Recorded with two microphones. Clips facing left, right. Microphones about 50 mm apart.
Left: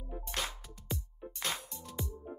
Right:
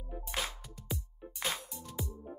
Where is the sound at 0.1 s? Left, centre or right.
Centre.